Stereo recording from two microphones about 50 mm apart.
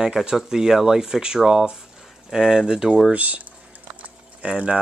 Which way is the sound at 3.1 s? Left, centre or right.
Right.